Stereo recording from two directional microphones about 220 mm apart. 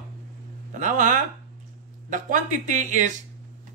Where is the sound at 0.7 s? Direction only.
35° right (ahead or behind).